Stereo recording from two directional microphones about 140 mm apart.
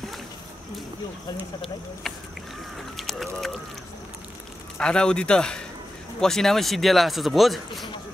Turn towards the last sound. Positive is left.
turn(degrees=0)  # may be behind; listen again after turning